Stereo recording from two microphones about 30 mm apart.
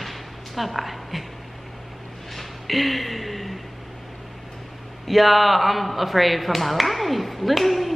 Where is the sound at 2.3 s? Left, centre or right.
Centre.